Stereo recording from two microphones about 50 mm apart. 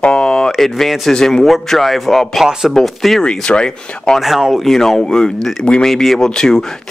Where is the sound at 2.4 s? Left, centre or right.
Centre.